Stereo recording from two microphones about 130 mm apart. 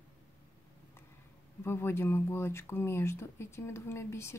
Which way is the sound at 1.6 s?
20° left (ahead or behind).